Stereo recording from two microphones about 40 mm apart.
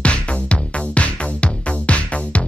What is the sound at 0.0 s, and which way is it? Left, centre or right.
Music, left.